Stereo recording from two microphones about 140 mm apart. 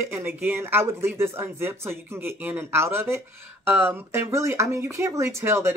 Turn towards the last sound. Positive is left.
turn(degrees=-15)  # may be behind; listen again after turning